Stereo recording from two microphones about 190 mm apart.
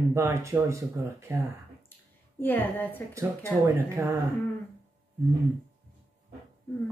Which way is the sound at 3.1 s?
15° right (ahead or behind).